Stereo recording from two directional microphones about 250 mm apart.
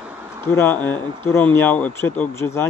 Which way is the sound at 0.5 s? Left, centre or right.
Centre.